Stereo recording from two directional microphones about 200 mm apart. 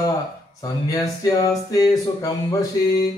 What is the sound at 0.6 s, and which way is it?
Speech, 20° left (ahead or behind).